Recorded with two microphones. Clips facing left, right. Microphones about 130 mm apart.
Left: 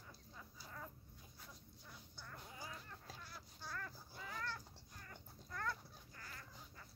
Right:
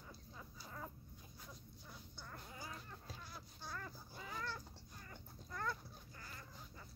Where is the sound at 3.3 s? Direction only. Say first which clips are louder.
Left 1 dB; 20° right (ahead or behind).